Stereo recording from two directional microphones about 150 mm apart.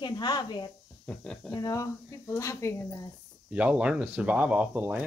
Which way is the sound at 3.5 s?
10° right (ahead or behind).